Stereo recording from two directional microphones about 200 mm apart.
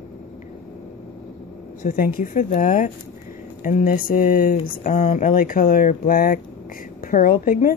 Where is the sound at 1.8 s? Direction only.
45° left (ahead or behind).